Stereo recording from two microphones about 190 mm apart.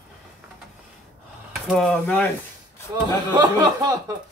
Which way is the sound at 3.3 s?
20° right (ahead or behind).